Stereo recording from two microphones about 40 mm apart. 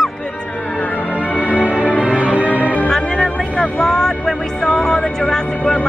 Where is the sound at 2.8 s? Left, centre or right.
Centre.